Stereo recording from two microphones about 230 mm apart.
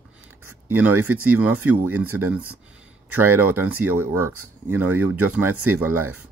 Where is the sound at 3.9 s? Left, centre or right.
Right.